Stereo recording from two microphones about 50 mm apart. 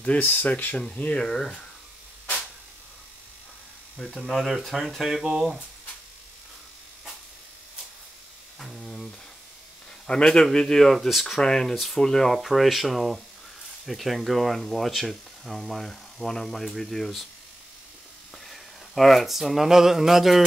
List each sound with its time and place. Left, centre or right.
0.2 s speech: left
1.2 s a man's voice: centre
4.0 s speech: centre
5.2 s speech: centre
8.5 s a sound: centre
10.0 s a man's voice: centre
11.0 s speech: centre
11.2 s a man's voice: centre
11.7 s speech: centre
12.0 s speech: centre
18.5 s speech: centre